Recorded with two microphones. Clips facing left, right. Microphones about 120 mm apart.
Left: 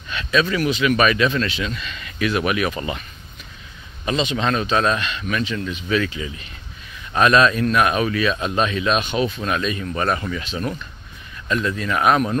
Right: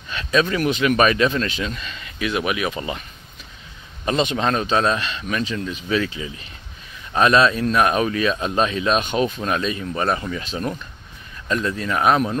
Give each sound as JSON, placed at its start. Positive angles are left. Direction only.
{"t": 0.1, "sound": "a sound", "side_deg": -35}
{"t": 0.7, "sound": "speech", "side_deg": -45}
{"t": 4.2, "sound": "speech", "side_deg": -50}
{"t": 4.5, "sound": "speech", "side_deg": -30}
{"t": 11.4, "sound": "speech", "side_deg": -35}